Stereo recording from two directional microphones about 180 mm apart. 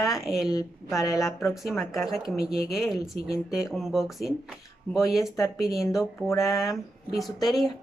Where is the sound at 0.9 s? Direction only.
20° left (ahead or behind).